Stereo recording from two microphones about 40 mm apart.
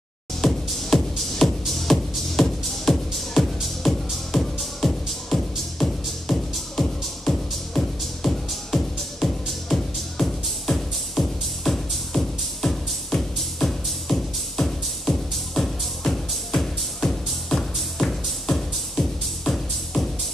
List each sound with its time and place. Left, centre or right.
0.4 s music: centre